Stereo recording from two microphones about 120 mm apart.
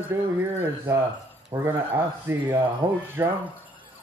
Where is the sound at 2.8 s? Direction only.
40° right (ahead or behind).